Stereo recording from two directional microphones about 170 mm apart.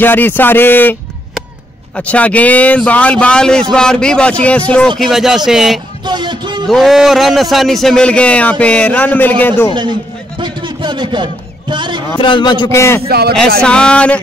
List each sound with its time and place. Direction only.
0.0 s a man's voice: 10° left (ahead or behind)
2.0 s a man's voice: 10° left (ahead or behind)
6.0 s speech: 25° right (ahead or behind)
6.7 s a man's voice: centre (ahead or behind)
10.4 s a sound: 25° right (ahead or behind)
11.7 s speech: 25° right (ahead or behind)
12.2 s a man's voice: 30° left (ahead or behind)
13.1 s speech: 70° right (ahead or behind)
13.6 s a man's voice: 5° left (ahead or behind)